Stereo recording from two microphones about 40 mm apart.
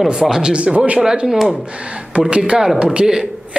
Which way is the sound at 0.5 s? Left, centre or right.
Right.